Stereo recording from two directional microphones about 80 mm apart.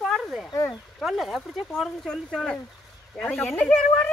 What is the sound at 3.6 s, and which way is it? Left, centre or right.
Speech, left.